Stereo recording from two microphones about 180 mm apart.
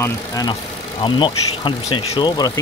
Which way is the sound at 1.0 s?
25° left (ahead or behind).